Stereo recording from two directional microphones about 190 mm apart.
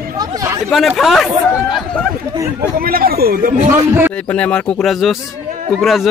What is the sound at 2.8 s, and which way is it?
Speech, 50° right (ahead or behind).